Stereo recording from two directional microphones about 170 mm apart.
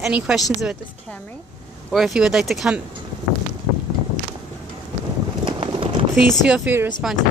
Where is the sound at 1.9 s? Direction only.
Centre (ahead or behind).